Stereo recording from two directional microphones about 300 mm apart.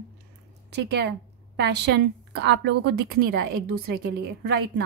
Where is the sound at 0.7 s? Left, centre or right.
Right.